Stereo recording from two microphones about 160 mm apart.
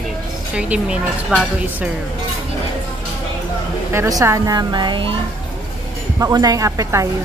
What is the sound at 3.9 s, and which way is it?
Speech, 20° right (ahead or behind).